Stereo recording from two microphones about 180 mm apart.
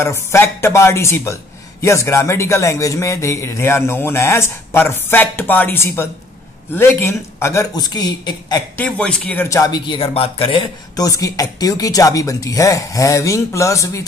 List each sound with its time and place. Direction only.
0.0 s a man's voice: 15° left (ahead or behind)
8.7 s speech: 5° left (ahead or behind)